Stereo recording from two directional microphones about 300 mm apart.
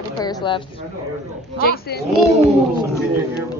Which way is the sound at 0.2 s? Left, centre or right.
Centre.